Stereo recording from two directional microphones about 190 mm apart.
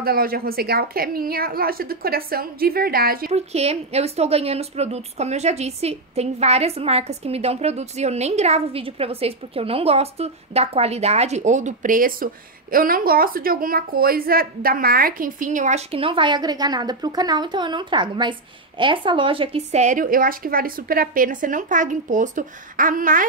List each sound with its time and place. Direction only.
0.0 s a woman's voice: 50° right (ahead or behind)
3.3 s a woman's voice: 35° right (ahead or behind)